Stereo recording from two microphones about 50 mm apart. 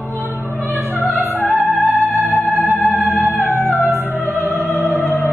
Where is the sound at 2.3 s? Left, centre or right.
Centre.